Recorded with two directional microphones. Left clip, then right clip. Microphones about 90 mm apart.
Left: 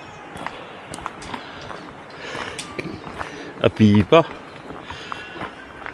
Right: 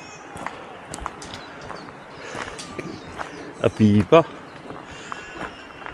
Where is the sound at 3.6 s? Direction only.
20° left (ahead or behind).